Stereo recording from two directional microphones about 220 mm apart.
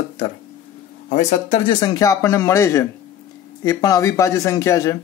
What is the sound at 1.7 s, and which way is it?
Speech, 20° left (ahead or behind).